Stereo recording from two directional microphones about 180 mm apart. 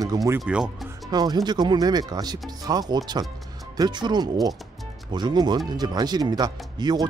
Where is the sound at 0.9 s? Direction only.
20° right (ahead or behind).